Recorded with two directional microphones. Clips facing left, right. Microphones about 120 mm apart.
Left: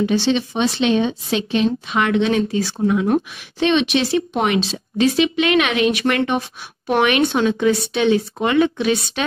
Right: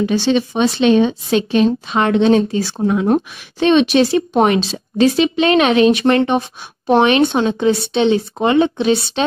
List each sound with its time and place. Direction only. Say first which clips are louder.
0.0 s a woman's voice: right 2 dB; 45° right (ahead or behind); by 9.2 s 30° right (ahead or behind)